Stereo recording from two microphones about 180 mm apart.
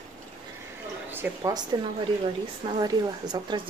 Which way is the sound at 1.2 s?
20° right (ahead or behind).